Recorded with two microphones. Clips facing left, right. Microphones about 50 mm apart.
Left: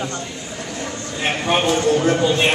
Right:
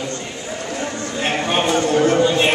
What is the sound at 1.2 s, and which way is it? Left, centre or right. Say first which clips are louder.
Speech: even; centre.